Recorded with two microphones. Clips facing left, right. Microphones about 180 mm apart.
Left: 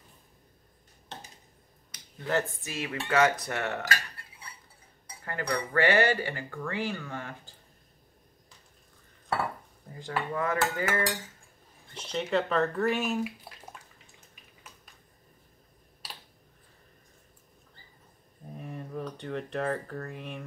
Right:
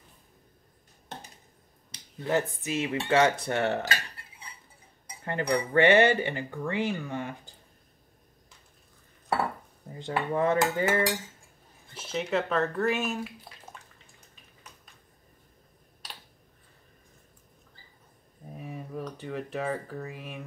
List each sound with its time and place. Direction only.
2.5 s speech: 20° right (ahead or behind)
9.9 s speech: 25° right (ahead or behind)
11.9 s speech: 5° right (ahead or behind)
13.8 s bathtub: 5° left (ahead or behind)
18.6 s speech: 5° right (ahead or behind)